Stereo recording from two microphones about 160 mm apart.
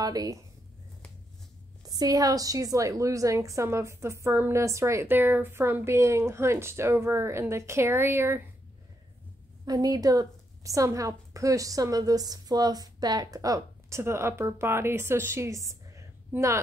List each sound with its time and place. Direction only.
0.0 s speech: 25° right (ahead or behind)
1.9 s a woman's voice: 25° right (ahead or behind)
9.7 s a woman's voice: 25° right (ahead or behind)